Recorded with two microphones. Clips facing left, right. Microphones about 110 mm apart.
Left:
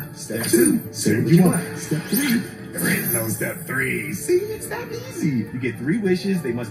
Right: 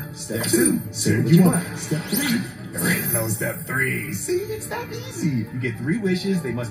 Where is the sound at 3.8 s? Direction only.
60° left (ahead or behind).